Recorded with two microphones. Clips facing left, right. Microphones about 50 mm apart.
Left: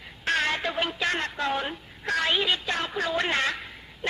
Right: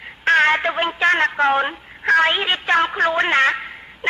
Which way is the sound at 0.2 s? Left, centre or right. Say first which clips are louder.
Right 11 dB; right.